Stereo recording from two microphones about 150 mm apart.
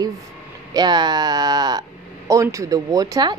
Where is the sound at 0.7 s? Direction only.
30° right (ahead or behind).